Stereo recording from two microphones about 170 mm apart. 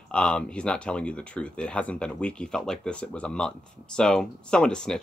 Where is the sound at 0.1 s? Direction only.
5° left (ahead or behind).